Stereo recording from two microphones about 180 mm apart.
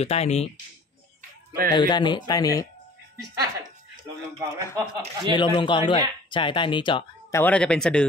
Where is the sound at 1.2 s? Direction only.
45° right (ahead or behind).